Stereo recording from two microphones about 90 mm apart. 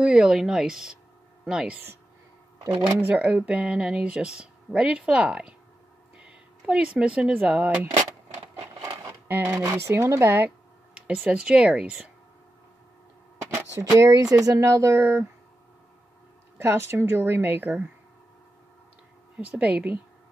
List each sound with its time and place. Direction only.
0.0 s speech: 10° right (ahead or behind)
2.6 s speech: 30° right (ahead or behind)
3.1 s speech: 15° right (ahead or behind)
8.8 s a sound: 25° right (ahead or behind)
9.7 s a woman's voice: 25° right (ahead or behind)
11.2 s speech: 10° right (ahead or behind)
13.8 s speech: 40° right (ahead or behind)
16.5 s a woman's voice: 30° right (ahead or behind)
19.3 s speech: 15° right (ahead or behind)